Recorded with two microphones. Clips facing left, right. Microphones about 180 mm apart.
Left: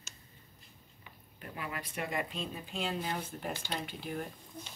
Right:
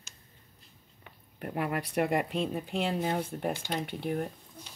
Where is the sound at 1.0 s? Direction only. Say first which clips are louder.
Right 9 dB; 60° right (ahead or behind).